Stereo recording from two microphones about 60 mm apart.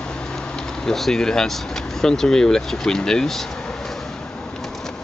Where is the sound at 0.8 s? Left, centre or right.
Centre.